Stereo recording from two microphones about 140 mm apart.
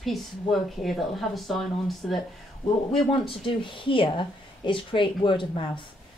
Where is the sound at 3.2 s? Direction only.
35° left (ahead or behind).